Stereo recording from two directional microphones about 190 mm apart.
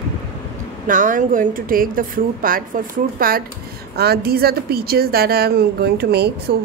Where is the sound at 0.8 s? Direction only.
45° right (ahead or behind).